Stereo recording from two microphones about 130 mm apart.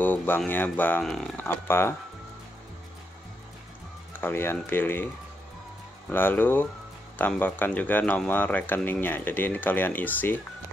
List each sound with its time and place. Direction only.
0.0 s a sound: 15° left (ahead or behind)
0.5 s speech: 15° left (ahead or behind)
1.0 s speech: 5° left (ahead or behind)
1.3 s speech: 20° left (ahead or behind)
4.1 s speech: 15° left (ahead or behind)
6.0 s speech: 15° left (ahead or behind)